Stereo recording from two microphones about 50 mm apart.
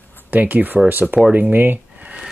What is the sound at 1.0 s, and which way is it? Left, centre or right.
Speech, right.